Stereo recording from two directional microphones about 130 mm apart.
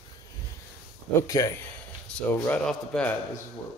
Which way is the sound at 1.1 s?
25° left (ahead or behind).